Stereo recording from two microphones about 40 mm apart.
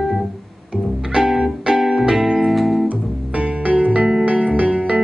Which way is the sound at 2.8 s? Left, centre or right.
Right.